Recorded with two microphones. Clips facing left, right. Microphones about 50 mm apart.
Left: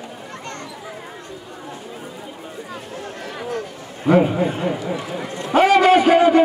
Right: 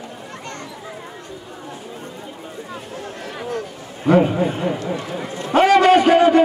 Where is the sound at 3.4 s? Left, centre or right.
Centre.